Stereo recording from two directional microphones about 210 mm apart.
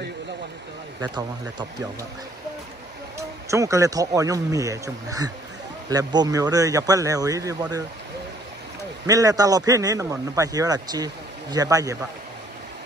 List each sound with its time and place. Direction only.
1.0 s speech: 20° right (ahead or behind)
3.2 s speech: 15° right (ahead or behind)
9.0 s speech: 15° right (ahead or behind)